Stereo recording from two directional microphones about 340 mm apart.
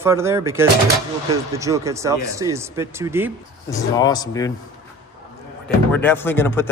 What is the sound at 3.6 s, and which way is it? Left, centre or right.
Speech, centre.